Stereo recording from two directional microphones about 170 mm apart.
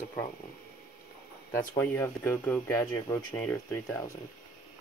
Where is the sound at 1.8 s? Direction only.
10° left (ahead or behind).